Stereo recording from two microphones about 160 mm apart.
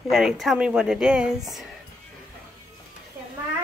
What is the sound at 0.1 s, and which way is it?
A woman's voice, centre (ahead or behind).